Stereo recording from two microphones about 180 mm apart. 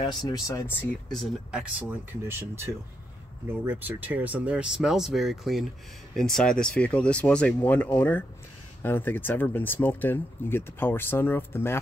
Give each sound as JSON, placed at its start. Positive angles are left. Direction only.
{"t": 0.0, "sound": "speech", "side_deg": 25}
{"t": 1.1, "sound": "speech", "side_deg": -5}